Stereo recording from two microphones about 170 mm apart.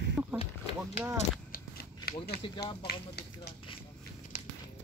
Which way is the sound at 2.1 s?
65° left (ahead or behind).